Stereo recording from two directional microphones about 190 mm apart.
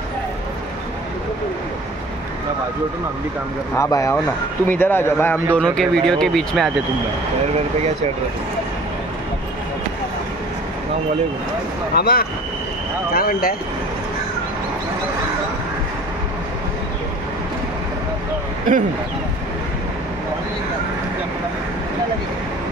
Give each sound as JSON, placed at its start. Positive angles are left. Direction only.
{"t": 3.7, "sound": "speech", "side_deg": 15}
{"t": 11.9, "sound": "speech", "side_deg": 55}